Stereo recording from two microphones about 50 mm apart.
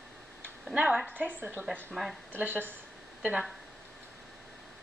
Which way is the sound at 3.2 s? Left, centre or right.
Right.